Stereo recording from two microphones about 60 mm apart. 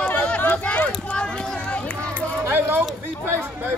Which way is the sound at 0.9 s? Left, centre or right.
Centre.